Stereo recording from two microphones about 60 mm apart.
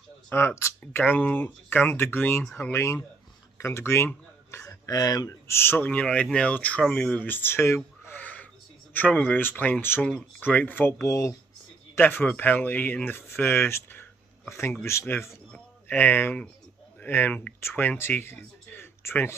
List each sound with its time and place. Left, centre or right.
0.3 s speech: left
1.0 s speech: left
4.6 s speech: left
5.5 s speech: left
5.9 s speech: left
8.2 s crow: left
8.9 s speech: left
11.1 s speech: left
12.0 s speech: left
15.9 s speech: left
17.6 s speech: left